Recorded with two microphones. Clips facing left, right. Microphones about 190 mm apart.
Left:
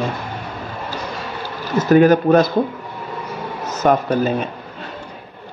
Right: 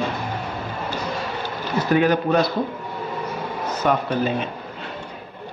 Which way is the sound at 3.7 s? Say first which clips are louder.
Left 5 dB; 45° left (ahead or behind).